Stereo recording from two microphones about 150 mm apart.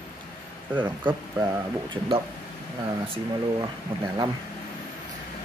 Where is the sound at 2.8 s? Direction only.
35° right (ahead or behind).